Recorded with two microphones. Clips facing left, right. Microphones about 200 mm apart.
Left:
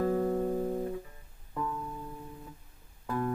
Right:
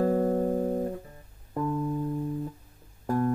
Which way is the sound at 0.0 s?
45° right (ahead or behind).